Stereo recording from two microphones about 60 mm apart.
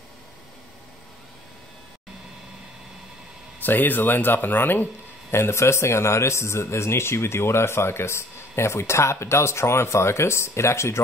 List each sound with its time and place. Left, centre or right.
3.6 s speech: left
5.3 s speech: left